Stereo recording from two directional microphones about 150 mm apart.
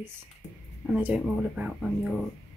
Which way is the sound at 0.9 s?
10° right (ahead or behind).